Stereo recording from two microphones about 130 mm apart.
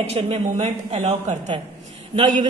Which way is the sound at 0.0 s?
50° right (ahead or behind).